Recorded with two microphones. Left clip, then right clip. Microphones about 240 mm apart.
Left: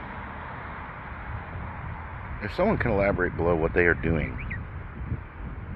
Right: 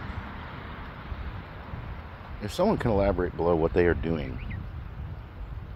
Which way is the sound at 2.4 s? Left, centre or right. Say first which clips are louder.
Left 1 dB; centre.